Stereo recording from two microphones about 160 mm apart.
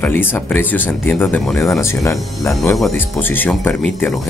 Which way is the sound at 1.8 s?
20° left (ahead or behind).